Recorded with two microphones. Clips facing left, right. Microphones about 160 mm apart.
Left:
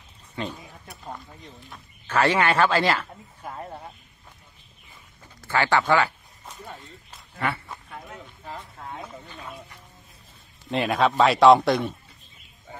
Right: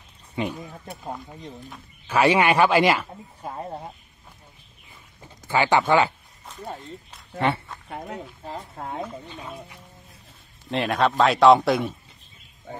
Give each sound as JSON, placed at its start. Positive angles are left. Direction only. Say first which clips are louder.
{"t": 0.4, "sound": "speech", "louder": "right 4 dB", "side_deg": -15}
{"t": 5.4, "sound": "speech", "louder": "right 2 dB", "side_deg": -15}
{"t": 7.3, "sound": "speech", "louder": "right 5 dB", "side_deg": -25}
{"t": 10.7, "sound": "a man's voice", "louder": "even", "side_deg": 0}